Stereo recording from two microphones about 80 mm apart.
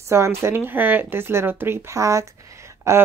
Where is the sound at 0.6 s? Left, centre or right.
Right.